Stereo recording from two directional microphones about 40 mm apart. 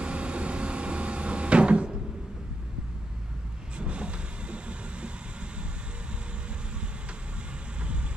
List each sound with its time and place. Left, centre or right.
0.0 s music: right
3.7 s vehicle: right
7.8 s rain: right